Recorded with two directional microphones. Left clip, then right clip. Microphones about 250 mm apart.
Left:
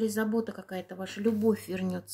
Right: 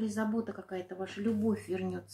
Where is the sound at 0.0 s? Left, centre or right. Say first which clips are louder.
Left 5 dB; left.